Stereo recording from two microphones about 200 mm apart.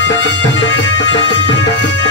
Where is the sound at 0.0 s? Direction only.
65° left (ahead or behind).